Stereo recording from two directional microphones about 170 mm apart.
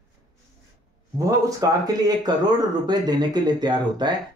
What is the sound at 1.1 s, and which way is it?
Speech, 20° right (ahead or behind).